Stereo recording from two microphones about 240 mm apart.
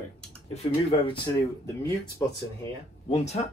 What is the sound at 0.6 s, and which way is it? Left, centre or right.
Speech, left.